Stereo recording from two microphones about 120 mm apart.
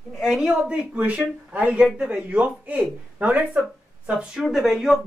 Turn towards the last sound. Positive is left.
turn(degrees=0)  # may be behind; listen again after turning